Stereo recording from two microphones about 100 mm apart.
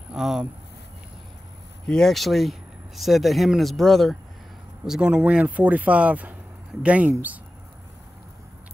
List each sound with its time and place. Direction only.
0.1 s speech: 5° right (ahead or behind)
1.9 s speech: 5° left (ahead or behind)
4.8 s speech: 10° right (ahead or behind)